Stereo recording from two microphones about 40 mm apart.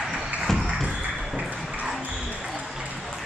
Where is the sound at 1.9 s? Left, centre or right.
Centre.